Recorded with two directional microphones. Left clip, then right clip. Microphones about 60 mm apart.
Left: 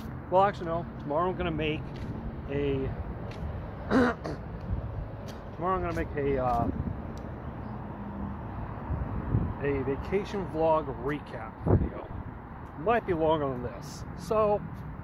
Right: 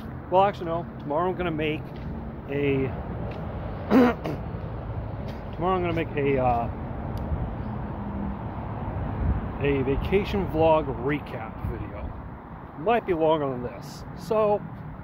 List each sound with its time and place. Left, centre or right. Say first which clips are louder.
0.3 s speech: right 3 dB; right
2.5 s speech: right 5 dB; right
3.9 s speech: right 5 dB; right
5.6 s speech: right 4 dB; right
5.9 s speech: right 5 dB; right
9.6 s speech: right 6 dB; right
10.0 s speech: right 6 dB; right
12.8 s speech: right 4 dB; right
13.3 s speech: right 4 dB; right
14.3 s speech: right 3 dB; right